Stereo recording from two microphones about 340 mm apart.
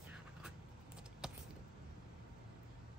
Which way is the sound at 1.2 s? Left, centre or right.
Centre.